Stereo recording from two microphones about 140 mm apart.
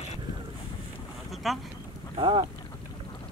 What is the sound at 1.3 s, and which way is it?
Boat, centre (ahead or behind).